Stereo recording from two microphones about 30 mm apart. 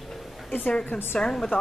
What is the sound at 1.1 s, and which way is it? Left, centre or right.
Speech, left.